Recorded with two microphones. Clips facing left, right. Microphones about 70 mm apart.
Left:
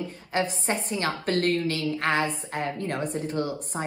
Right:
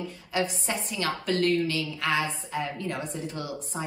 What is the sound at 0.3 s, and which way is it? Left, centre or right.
A woman's voice, left.